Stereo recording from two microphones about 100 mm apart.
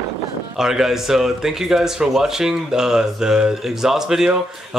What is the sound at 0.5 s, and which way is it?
A man's voice, 5° right (ahead or behind).